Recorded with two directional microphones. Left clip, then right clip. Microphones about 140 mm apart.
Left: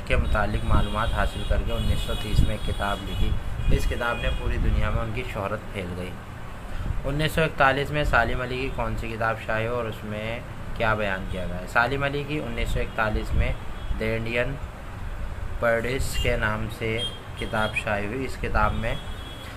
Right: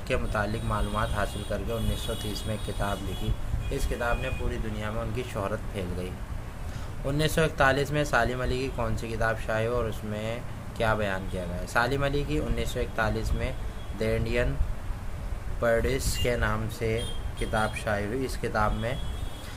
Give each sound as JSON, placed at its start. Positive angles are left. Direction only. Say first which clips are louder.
{"t": 0.1, "sound": "speech", "louder": "left 3 dB", "side_deg": -40}
{"t": 3.7, "sound": "speech", "louder": "left 3 dB", "side_deg": -20}
{"t": 5.3, "sound": "speech", "louder": "left 3 dB", "side_deg": -40}
{"t": 7.2, "sound": "speech", "louder": "left 3 dB", "side_deg": -45}
{"t": 15.6, "sound": "speech", "louder": "left 2 dB", "side_deg": -35}